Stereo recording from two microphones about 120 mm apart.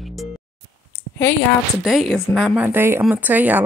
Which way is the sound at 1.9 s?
Centre (ahead or behind).